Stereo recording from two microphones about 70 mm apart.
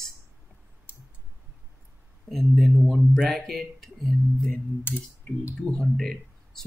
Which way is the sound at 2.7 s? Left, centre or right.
Centre.